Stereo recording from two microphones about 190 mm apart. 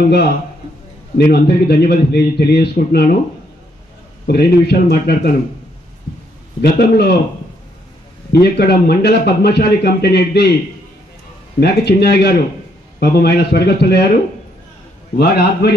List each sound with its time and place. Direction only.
1.1 s a man's voice: 60° left (ahead or behind)
4.3 s a man's voice: 55° left (ahead or behind)
6.6 s a man's voice: 55° left (ahead or behind)
8.3 s a man's voice: 55° left (ahead or behind)
11.6 s a man's voice: 60° left (ahead or behind)
15.1 s a man's voice: 55° left (ahead or behind)